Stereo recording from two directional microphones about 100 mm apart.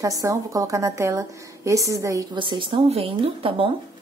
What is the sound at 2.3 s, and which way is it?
Speech, 50° right (ahead or behind).